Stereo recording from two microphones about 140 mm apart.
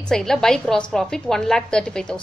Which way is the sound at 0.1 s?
5° left (ahead or behind).